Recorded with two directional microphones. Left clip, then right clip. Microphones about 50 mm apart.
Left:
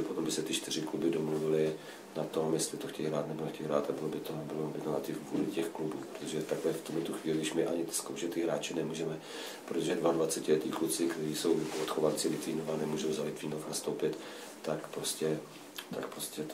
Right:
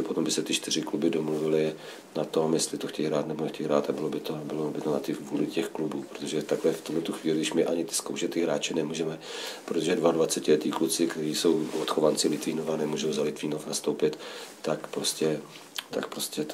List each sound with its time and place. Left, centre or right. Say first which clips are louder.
0.3 s speech: right 6 dB; right
5.0 s speech: right 5 dB; right